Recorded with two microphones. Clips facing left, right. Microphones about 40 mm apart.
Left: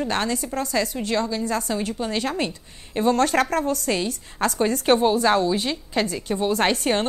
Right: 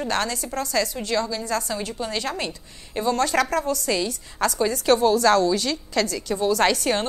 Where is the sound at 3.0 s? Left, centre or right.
Left.